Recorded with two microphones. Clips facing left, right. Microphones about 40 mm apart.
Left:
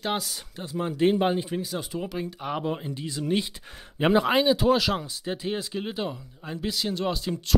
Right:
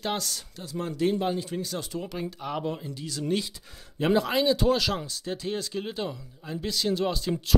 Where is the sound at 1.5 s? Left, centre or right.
Centre.